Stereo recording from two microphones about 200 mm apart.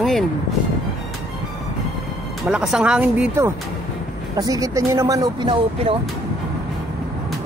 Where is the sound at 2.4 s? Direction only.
Centre (ahead or behind); by 5.9 s 25° right (ahead or behind).